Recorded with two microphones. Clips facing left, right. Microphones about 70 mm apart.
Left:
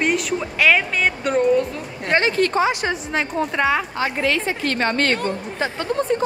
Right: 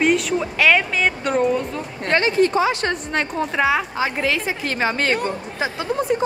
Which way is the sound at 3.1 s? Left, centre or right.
Centre.